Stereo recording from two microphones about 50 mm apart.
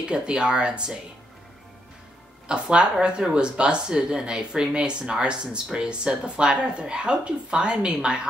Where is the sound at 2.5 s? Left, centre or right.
Right.